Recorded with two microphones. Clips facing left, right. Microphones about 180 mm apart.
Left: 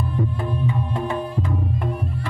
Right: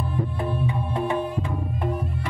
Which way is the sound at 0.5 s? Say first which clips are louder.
Left 2 dB; 15° right (ahead or behind).